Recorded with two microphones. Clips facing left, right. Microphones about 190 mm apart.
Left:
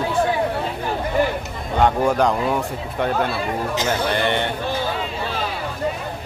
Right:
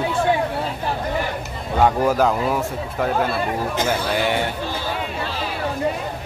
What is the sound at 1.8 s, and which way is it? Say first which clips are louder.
A man's voice: even; 5° right (ahead or behind).